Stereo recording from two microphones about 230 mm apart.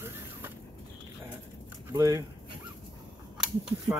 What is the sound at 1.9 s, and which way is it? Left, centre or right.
Speech, centre.